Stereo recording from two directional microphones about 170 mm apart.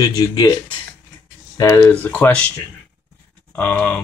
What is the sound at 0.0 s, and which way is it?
Speech, 20° left (ahead or behind).